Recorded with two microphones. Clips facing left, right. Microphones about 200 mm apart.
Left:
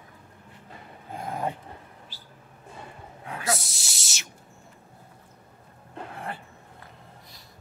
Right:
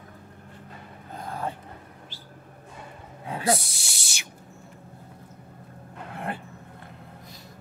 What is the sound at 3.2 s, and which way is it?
Snake, 30° right (ahead or behind).